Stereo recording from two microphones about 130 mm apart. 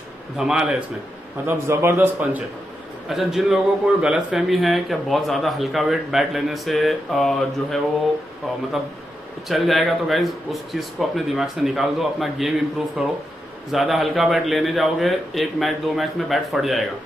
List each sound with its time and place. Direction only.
0.4 s a man's voice: 5° right (ahead or behind)
1.4 s a man's voice: 20° right (ahead or behind)
3.1 s a man's voice: 5° right (ahead or behind)
9.5 s a man's voice: centre (ahead or behind)